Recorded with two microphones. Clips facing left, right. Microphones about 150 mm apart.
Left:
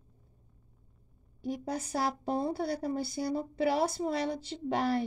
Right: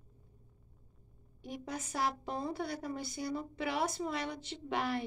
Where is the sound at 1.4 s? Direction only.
35° left (ahead or behind).